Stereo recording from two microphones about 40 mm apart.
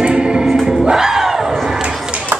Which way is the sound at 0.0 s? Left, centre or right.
Right.